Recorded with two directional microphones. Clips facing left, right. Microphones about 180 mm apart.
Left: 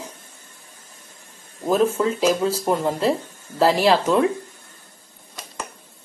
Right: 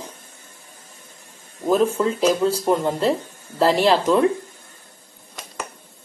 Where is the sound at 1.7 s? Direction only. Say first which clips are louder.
Right 1 dB; centre (ahead or behind).